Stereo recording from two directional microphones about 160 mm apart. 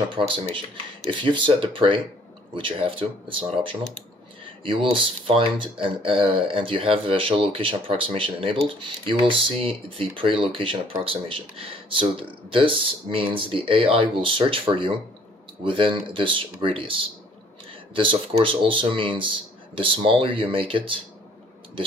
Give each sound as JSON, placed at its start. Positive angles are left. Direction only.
{"t": 1.0, "sound": "speech", "side_deg": -30}